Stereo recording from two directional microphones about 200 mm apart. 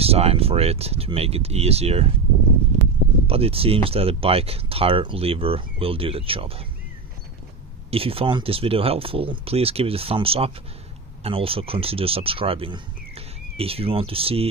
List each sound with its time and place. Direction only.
0.0 s speech: 30° right (ahead or behind)
3.3 s speech: 30° right (ahead or behind)
7.9 s speech: 30° right (ahead or behind)